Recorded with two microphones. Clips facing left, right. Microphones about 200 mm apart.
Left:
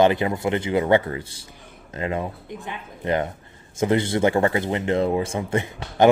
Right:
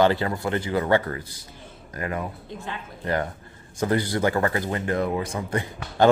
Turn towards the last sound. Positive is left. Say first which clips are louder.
# left 2 dB
turn(degrees=25)  # may be behind; listen again after turning